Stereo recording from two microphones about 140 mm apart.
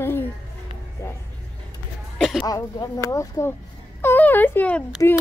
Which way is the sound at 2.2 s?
Centre (ahead or behind).